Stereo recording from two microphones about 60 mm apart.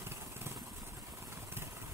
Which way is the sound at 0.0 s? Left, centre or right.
Right.